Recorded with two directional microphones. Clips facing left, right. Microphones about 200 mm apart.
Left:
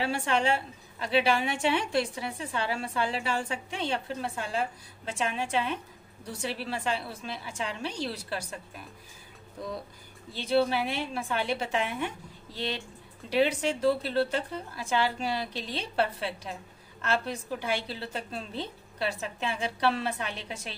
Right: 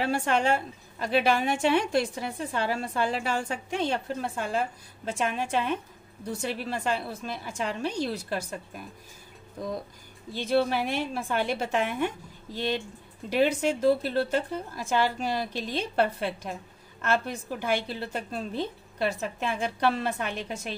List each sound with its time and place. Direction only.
0.0 s a woman's voice: 45° right (ahead or behind)
10.3 s a woman's voice: 45° right (ahead or behind)